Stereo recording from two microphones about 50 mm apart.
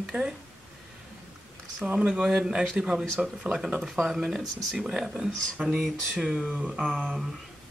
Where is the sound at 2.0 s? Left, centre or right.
Centre.